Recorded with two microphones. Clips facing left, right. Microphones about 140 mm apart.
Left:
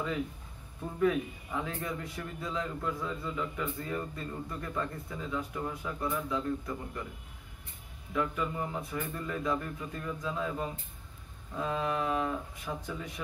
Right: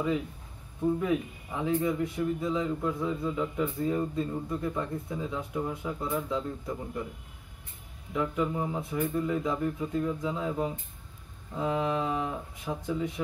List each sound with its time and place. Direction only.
1.0 s speech: 20° right (ahead or behind)
8.1 s speech: 20° right (ahead or behind)